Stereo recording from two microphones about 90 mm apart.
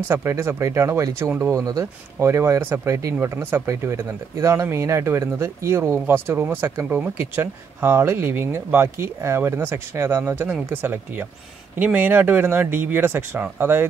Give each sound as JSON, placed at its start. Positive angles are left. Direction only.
{"t": 0.1, "sound": "speech", "side_deg": -30}
{"t": 2.1, "sound": "speech", "side_deg": -30}